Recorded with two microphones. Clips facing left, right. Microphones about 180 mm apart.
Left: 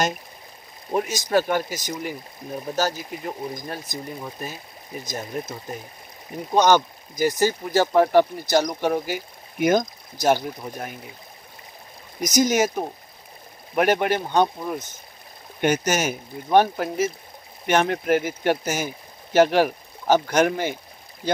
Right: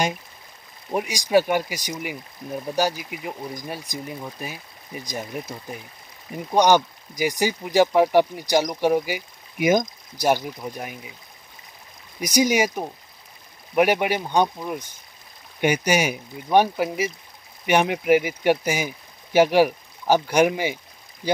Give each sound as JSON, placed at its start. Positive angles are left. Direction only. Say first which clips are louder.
{"t": 0.9, "sound": "speech", "louder": "right 2 dB", "side_deg": -15}
{"t": 6.5, "sound": "speech", "louder": "even", "side_deg": -15}
{"t": 12.2, "sound": "speech", "louder": "even", "side_deg": -10}